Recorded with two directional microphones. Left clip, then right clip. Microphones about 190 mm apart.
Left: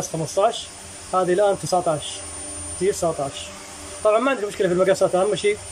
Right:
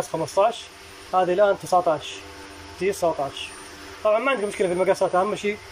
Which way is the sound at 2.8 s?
15° left (ahead or behind).